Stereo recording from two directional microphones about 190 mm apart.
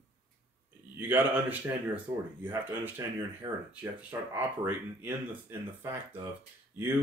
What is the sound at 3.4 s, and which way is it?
Speech, 25° right (ahead or behind).